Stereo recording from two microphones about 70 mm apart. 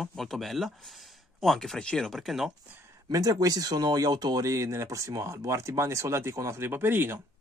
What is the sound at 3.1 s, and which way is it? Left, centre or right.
Speech, right.